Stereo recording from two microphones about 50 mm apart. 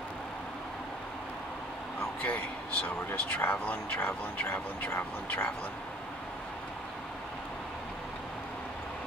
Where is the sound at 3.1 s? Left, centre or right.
Left.